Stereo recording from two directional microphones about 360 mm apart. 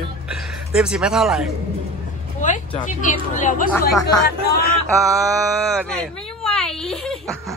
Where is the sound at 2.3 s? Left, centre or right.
Left.